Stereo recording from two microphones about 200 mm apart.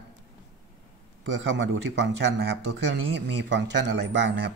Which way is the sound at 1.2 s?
65° right (ahead or behind).